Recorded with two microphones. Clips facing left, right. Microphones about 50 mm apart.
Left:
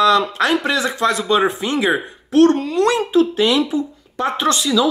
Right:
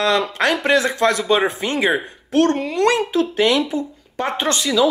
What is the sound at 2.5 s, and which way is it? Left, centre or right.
Speech, right.